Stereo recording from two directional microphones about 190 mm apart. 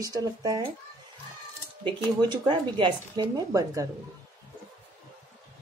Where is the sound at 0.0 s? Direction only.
20° right (ahead or behind).